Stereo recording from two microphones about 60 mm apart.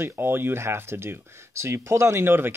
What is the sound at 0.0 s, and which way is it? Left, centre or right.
Speech, right.